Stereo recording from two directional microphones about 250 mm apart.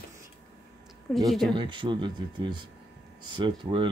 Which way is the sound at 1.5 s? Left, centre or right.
Centre.